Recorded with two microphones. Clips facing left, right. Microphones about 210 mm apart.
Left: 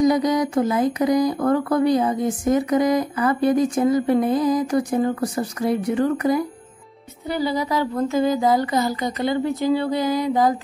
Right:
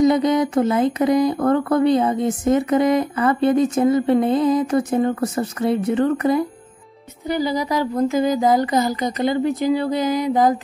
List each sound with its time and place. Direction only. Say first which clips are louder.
0.0 s a woman's voice: right 2 dB; 25° right (ahead or behind)
7.2 s a woman's voice: right 2 dB; 15° right (ahead or behind)